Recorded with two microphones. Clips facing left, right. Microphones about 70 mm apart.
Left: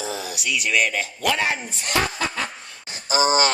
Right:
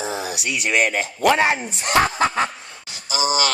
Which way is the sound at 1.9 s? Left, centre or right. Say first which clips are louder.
Right 6 dB; right.